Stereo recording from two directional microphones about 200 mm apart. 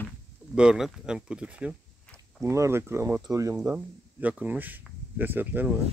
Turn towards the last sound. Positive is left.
turn(degrees=-10)  # may be behind; listen again after turning